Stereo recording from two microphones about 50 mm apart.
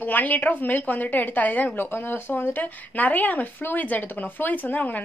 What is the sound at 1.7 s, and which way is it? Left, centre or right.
A woman's voice, left.